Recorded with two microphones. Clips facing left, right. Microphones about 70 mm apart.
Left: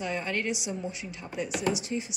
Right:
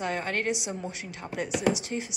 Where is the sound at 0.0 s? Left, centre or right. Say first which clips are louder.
Right 2 dB; right.